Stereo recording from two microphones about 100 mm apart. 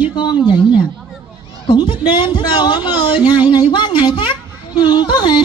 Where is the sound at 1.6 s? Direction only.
50° left (ahead or behind).